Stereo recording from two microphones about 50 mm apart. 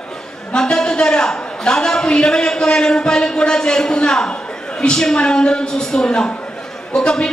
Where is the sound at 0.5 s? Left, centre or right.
Centre.